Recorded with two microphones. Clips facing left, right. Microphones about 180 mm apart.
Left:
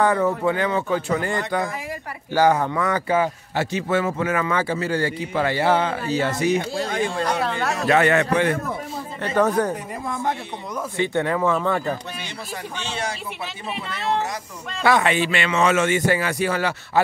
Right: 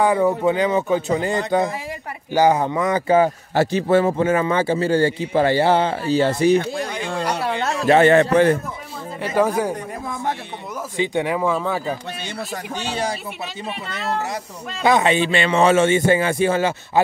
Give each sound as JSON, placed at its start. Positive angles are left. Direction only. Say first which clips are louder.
{"t": 0.0, "sound": "a man's voice", "louder": "right 2 dB", "side_deg": -15}
{"t": 3.1, "sound": "a man's voice", "louder": "right 5 dB", "side_deg": -35}
{"t": 7.4, "sound": "a sound", "louder": "right 2 dB", "side_deg": -20}
{"t": 7.8, "sound": "a man's voice", "louder": "right 5 dB", "side_deg": -30}
{"t": 9.2, "sound": "a man's voice", "louder": "right 1 dB", "side_deg": -10}
{"t": 14.8, "sound": "a man's voice", "louder": "right 2 dB", "side_deg": -20}